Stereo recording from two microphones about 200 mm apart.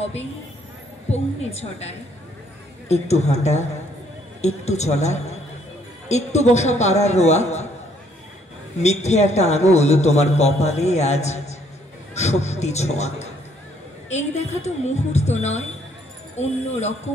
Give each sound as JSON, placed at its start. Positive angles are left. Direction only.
{"t": 1.1, "sound": "a man's voice", "side_deg": 30}
{"t": 8.7, "sound": "a man's voice", "side_deg": 35}